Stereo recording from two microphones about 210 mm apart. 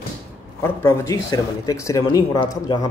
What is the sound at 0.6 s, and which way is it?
Speech, 10° left (ahead or behind).